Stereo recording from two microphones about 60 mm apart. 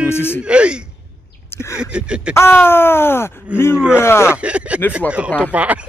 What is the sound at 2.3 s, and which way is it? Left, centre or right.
Speech, left.